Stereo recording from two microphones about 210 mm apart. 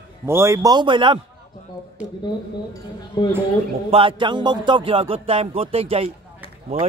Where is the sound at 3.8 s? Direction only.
25° right (ahead or behind).